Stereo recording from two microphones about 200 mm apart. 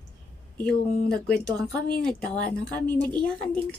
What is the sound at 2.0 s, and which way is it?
A woman's voice, 5° left (ahead or behind).